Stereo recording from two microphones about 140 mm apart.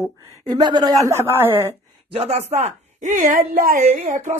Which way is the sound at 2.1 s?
45° right (ahead or behind).